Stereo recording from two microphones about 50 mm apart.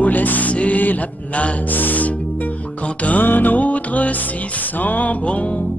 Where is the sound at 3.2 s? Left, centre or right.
Left.